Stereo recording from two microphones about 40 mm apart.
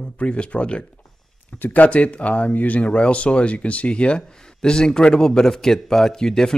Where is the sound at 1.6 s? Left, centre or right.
Left.